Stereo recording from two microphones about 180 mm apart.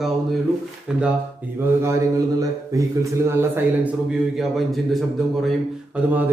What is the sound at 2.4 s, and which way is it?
A man's voice, 15° right (ahead or behind).